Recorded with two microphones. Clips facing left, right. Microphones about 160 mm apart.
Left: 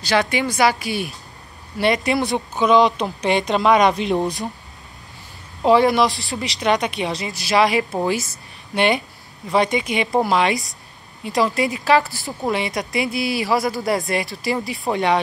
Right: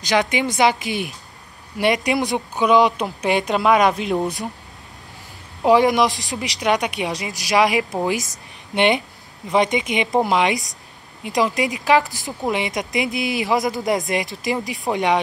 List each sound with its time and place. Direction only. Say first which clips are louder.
0.0 s speech: even; 20° right (ahead or behind); by 4.5 s centre (ahead or behind)
5.7 s speech: even; 15° right (ahead or behind)